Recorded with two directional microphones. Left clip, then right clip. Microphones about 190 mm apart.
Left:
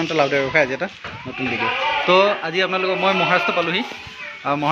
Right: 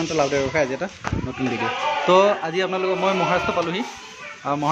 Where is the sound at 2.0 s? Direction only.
20° right (ahead or behind).